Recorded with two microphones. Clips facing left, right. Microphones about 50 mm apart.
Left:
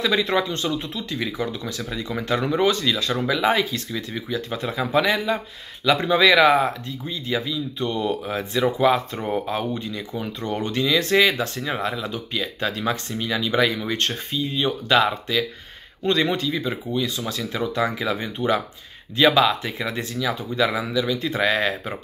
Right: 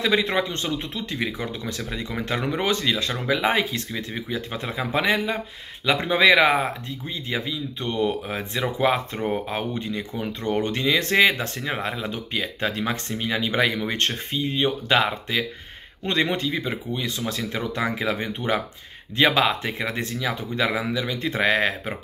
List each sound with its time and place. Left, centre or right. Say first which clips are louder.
0.0 s speech: left 1 dB; right